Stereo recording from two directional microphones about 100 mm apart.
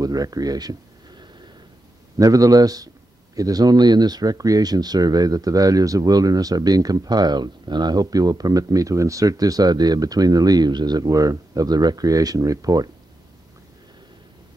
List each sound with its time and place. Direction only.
0.0 s speech: 40° right (ahead or behind)